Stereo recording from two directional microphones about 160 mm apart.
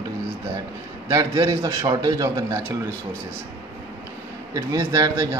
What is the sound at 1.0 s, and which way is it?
A man's voice, 20° right (ahead or behind).